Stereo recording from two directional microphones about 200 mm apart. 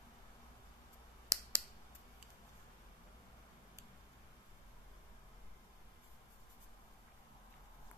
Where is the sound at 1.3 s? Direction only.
15° right (ahead or behind).